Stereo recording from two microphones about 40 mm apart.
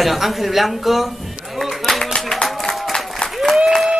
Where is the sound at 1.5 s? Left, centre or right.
Centre.